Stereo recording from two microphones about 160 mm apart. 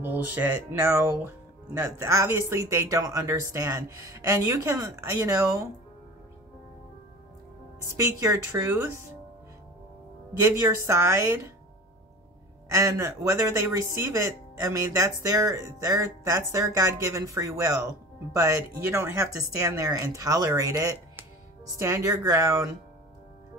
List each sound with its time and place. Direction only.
0.0 s speech: 10° right (ahead or behind)
8.2 s speech: 15° right (ahead or behind)
10.4 s speech: 15° right (ahead or behind)
12.7 s speech: 20° right (ahead or behind)